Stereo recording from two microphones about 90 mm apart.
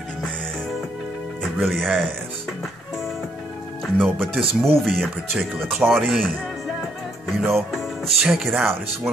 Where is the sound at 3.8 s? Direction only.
5° left (ahead or behind).